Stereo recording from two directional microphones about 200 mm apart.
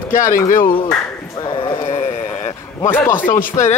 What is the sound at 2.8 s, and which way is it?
Speech, 10° left (ahead or behind).